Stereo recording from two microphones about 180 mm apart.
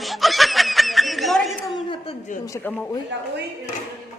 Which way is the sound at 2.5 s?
10° left (ahead or behind).